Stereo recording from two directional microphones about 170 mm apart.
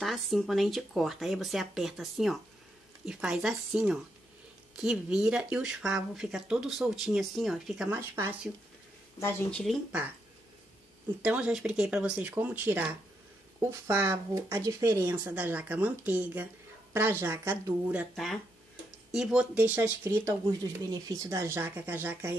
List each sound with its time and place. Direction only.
0.0 s speech: centre (ahead or behind)
9.2 s speech: 10° left (ahead or behind)
11.2 s speech: 5° right (ahead or behind)
18.1 s speech: centre (ahead or behind)